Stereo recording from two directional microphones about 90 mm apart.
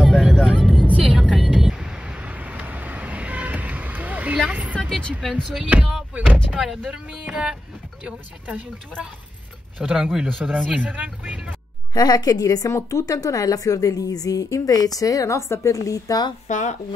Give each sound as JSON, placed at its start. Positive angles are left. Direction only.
{"t": 0.0, "sound": "vehicle", "side_deg": -5}
{"t": 0.8, "sound": "vehicle", "side_deg": -15}
{"t": 4.7, "sound": "vehicle", "side_deg": 10}
{"t": 5.2, "sound": "speech", "side_deg": 0}
{"t": 6.1, "sound": "speech", "side_deg": -15}
{"t": 11.9, "sound": "a woman's voice", "side_deg": 50}